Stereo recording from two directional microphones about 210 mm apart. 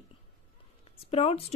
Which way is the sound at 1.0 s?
30° left (ahead or behind).